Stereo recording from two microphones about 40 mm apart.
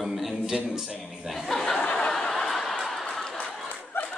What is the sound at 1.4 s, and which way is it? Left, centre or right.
Speech, centre.